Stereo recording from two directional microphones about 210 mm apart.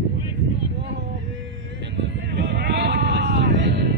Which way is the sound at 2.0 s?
50° right (ahead or behind).